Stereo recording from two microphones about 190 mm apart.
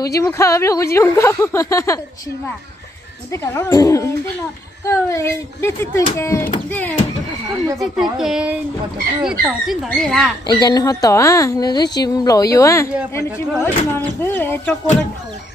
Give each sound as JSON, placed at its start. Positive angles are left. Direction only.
{"t": 0.0, "sound": "speech", "side_deg": 15}
{"t": 3.3, "sound": "speech", "side_deg": 15}
{"t": 7.8, "sound": "speech", "side_deg": 0}
{"t": 10.4, "sound": "a woman's voice", "side_deg": 20}